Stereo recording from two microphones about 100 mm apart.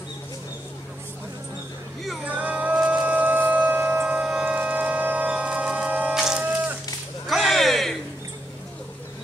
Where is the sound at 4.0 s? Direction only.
5° right (ahead or behind).